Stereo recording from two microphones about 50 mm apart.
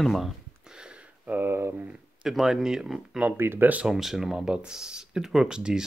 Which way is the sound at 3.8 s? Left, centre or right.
Centre.